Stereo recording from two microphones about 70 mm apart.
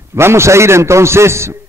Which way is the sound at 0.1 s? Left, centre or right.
Right.